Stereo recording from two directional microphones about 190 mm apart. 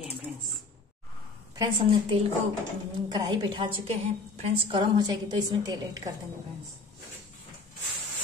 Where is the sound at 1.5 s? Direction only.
25° right (ahead or behind).